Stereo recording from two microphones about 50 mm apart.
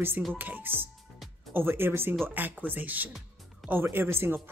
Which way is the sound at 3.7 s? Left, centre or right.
Right.